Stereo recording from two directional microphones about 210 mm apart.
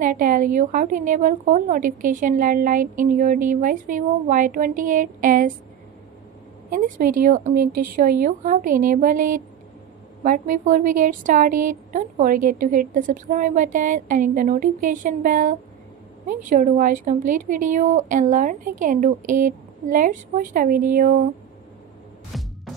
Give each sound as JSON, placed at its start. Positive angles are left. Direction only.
{"t": 0.0, "sound": "a woman's voice", "side_deg": -40}
{"t": 6.7, "sound": "a woman's voice", "side_deg": -40}
{"t": 22.3, "sound": "music", "side_deg": 0}